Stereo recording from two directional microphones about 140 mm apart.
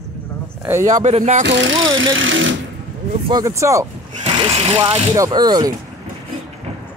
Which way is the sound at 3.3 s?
20° right (ahead or behind).